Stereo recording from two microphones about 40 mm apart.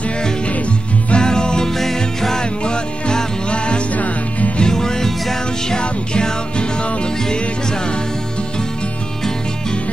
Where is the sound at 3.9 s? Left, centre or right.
Left.